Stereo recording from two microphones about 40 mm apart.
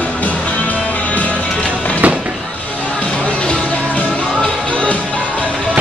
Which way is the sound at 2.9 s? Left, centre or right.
Left.